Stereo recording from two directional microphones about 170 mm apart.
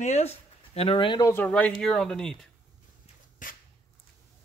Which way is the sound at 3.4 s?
50° left (ahead or behind).